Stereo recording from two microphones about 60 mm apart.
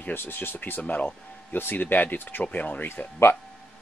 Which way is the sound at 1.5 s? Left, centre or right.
Left.